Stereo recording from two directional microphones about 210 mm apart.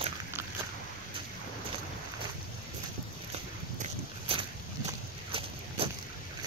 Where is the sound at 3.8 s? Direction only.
25° right (ahead or behind).